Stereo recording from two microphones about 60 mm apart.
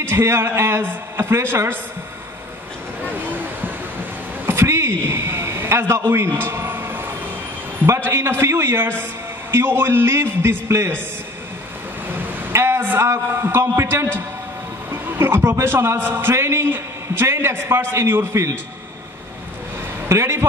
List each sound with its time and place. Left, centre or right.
0.0 s a man's voice: right
4.5 s a sound: right
7.8 s a man's voice: right
12.1 s a sound: right
13.1 s a man's voice: right
14.9 s music: right
15.5 s a man's voice: right
20.1 s a man's voice: right